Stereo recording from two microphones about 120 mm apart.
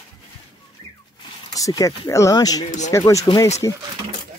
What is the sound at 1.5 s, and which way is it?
Speech, 30° left (ahead or behind).